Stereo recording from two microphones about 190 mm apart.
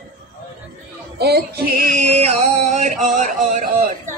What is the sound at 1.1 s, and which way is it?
Music, 55° right (ahead or behind).